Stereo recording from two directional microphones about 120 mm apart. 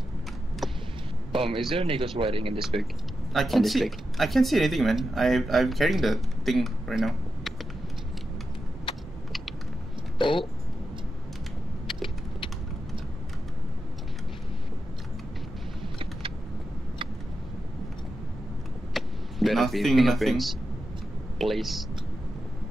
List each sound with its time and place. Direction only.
0.6 s a sound: centre (ahead or behind)
1.3 s speech: 50° right (ahead or behind)
3.3 s speech: centre (ahead or behind)
10.1 s speech: 45° left (ahead or behind)
18.9 s speech: centre (ahead or behind)